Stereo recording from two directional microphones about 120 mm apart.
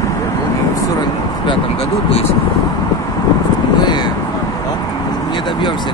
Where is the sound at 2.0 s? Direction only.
55° left (ahead or behind).